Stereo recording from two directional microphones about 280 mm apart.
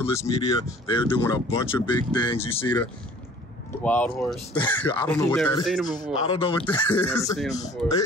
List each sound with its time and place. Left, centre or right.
0.1 s speech: centre
6.3 s speech: centre